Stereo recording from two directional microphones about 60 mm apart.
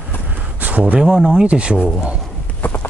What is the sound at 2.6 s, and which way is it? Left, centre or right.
Clip-clop, left.